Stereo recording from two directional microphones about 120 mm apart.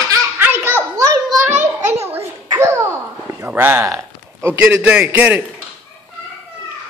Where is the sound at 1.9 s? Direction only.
20° right (ahead or behind).